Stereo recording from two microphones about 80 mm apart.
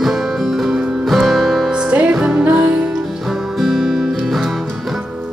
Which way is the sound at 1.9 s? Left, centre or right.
Centre.